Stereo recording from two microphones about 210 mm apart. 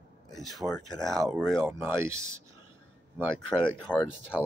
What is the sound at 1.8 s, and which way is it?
Speech, 15° right (ahead or behind).